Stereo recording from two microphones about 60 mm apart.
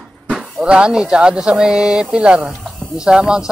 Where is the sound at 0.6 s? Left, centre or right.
Centre.